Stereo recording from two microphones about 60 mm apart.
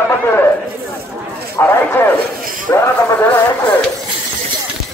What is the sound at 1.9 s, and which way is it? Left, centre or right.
Speech, left.